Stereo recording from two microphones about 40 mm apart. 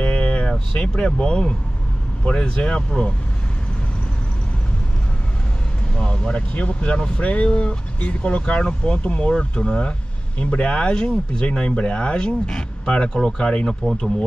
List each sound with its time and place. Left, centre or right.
0.0 s a sound: left
2.2 s speech: left
5.9 s speech: left